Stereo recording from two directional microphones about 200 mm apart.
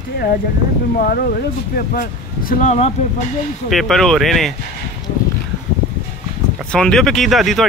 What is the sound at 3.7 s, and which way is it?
Speech, centre (ahead or behind).